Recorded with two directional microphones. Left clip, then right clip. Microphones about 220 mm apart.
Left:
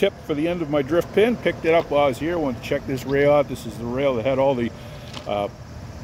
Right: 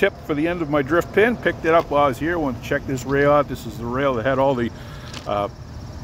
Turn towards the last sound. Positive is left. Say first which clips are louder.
# right 2 dB
turn(degrees=0)  # may be behind; listen again after turning